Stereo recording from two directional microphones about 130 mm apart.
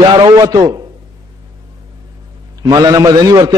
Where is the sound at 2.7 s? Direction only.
30° right (ahead or behind).